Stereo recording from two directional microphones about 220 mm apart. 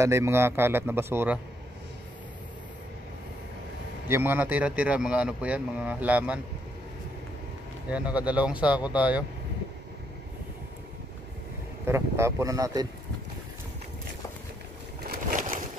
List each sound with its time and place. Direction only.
0.0 s a man's voice: 10° right (ahead or behind)
4.1 s a man's voice: 10° right (ahead or behind)
7.9 s speech: 5° right (ahead or behind)
11.8 s a man's voice: 10° right (ahead or behind)
15.0 s a sound: 40° right (ahead or behind)